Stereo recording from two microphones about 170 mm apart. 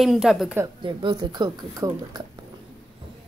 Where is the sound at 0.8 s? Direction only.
30° right (ahead or behind).